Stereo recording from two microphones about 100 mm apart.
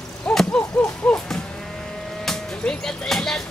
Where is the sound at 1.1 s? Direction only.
10° left (ahead or behind).